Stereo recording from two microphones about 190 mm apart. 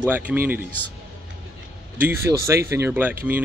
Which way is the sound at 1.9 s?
15° right (ahead or behind).